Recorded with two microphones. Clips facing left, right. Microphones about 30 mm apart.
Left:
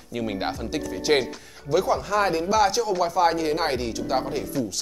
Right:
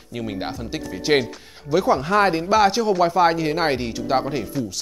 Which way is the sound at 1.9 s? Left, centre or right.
Right.